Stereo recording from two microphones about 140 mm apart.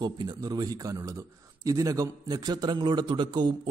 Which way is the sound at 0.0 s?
30° right (ahead or behind).